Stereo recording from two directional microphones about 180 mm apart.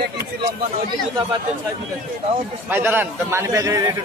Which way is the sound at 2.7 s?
10° right (ahead or behind).